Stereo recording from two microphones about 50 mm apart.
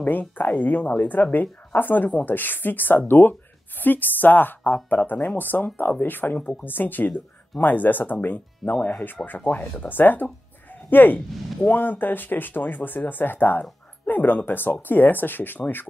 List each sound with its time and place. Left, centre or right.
0.0 s speech: left
8.6 s speech: left
9.0 s speech: left